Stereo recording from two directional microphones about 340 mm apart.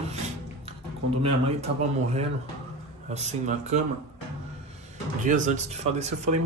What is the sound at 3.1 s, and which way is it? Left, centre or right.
Speech, centre.